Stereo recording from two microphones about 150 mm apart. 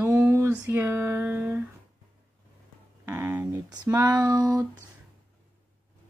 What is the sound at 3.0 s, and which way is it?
Speech, 15° right (ahead or behind).